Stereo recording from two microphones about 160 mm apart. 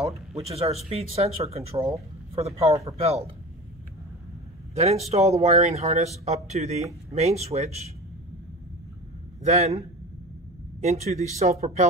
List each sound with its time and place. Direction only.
0.5 s speech: 40° right (ahead or behind)
4.7 s speech: 40° right (ahead or behind)
9.4 s a man's voice: 45° right (ahead or behind)
10.8 s speech: 45° right (ahead or behind)